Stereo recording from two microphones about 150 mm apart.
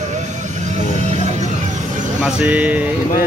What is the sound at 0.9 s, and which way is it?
Music, 50° right (ahead or behind).